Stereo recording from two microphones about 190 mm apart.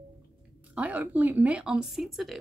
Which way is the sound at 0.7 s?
10° right (ahead or behind).